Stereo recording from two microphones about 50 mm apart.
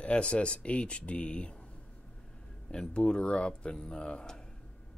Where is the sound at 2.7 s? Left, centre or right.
Centre.